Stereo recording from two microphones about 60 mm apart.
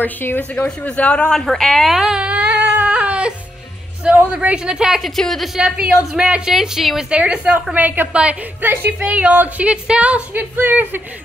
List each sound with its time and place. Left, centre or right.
0.0 s speech: left
0.7 s a man's voice: left
1.4 s a woman's voice: centre
2.2 s a sound: centre
2.9 s music: centre
4.3 s speech: centre
5.0 s a woman's voice: centre
5.6 s speech: centre
6.5 s a woman's voice: centre
7.1 s speech: centre
7.7 s speech: right
8.6 s speech: right